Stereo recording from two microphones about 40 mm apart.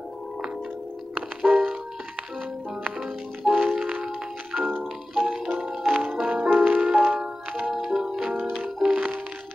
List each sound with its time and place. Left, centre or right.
1.4 s music: centre
3.0 s music: centre
6.3 s music: right
6.8 s music: centre